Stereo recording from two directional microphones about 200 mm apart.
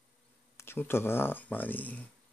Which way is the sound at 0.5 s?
10° left (ahead or behind).